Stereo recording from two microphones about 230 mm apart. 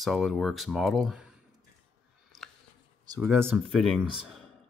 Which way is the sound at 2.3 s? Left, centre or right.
Centre.